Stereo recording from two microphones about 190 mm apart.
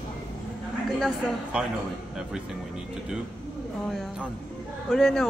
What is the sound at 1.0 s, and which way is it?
Speech, 5° right (ahead or behind).